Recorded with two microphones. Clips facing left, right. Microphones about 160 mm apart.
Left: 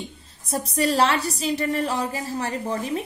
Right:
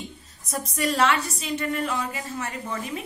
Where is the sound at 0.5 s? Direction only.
30° left (ahead or behind).